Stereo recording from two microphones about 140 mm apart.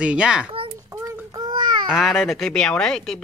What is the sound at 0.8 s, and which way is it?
Child singing, 20° right (ahead or behind).